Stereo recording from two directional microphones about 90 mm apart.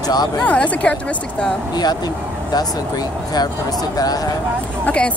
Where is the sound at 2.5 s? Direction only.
45° left (ahead or behind).